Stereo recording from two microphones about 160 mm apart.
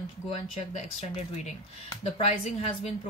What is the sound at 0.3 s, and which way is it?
A woman's voice, 40° left (ahead or behind).